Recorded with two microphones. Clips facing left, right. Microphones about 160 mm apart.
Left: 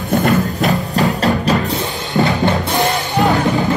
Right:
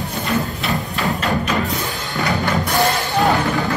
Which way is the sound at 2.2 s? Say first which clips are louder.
Even; 20° left (ahead or behind).